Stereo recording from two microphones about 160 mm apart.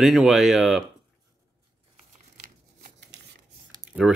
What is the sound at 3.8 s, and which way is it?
Typing, 5° right (ahead or behind).